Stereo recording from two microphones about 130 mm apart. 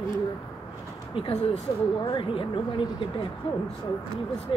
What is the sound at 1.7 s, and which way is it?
A woman's voice, 35° left (ahead or behind).